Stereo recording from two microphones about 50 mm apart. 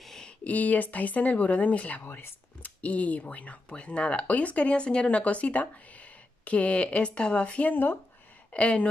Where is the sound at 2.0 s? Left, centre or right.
Left.